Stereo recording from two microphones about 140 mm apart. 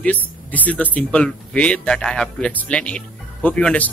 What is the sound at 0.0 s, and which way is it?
Speech, 10° left (ahead or behind).